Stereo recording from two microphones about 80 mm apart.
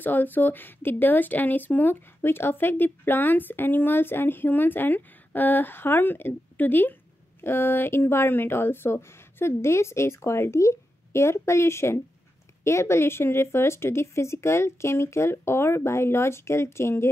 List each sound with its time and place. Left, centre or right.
0.0 s speech: left